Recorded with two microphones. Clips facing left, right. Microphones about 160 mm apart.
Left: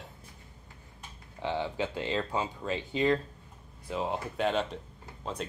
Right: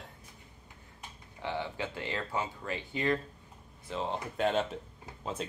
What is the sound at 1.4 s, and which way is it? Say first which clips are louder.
Speech: left 4 dB; 20° left (ahead or behind).